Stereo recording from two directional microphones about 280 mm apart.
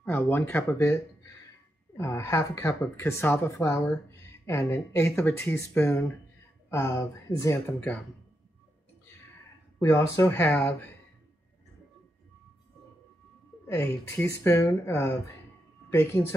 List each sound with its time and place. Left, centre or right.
0.0 s speech: centre
2.0 s speech: centre
9.8 s speech: centre
13.7 s speech: centre